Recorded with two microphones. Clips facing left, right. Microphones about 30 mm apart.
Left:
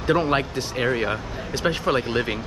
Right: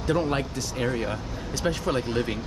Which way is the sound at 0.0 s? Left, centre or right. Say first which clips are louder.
Left 4 dB; left.